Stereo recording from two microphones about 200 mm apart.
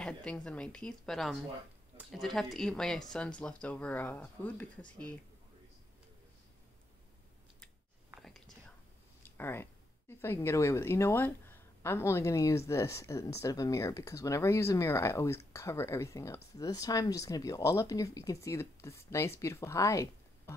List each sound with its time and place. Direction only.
0.0 s speech: 5° left (ahead or behind)
8.2 s whispering: centre (ahead or behind)
9.2 s speech: 10° left (ahead or behind)